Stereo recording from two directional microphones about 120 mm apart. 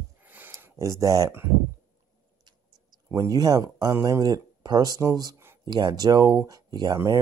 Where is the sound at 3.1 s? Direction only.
30° right (ahead or behind).